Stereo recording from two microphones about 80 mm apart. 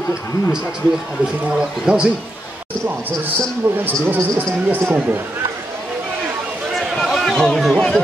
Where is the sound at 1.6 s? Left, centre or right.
Centre.